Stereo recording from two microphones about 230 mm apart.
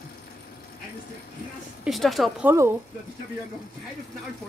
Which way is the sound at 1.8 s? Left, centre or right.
Centre.